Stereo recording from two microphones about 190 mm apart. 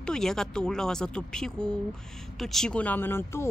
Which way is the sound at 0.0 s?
5° left (ahead or behind).